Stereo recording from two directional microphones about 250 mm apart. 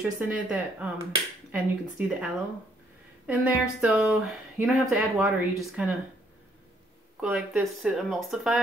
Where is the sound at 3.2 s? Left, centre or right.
Centre.